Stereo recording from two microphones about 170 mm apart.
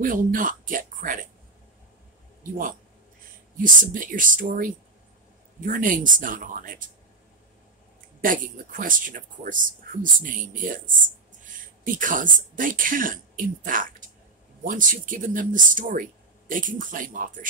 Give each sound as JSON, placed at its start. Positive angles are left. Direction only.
{"t": 0.0, "sound": "speech", "side_deg": -55}
{"t": 3.6, "sound": "speech", "side_deg": -50}
{"t": 8.2, "sound": "speech", "side_deg": -55}
{"t": 11.8, "sound": "speech", "side_deg": -50}